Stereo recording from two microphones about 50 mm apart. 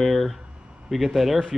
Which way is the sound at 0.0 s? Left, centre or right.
Centre.